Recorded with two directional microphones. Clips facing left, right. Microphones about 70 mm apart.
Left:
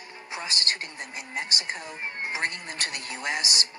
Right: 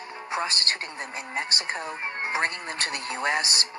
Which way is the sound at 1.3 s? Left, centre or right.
Right.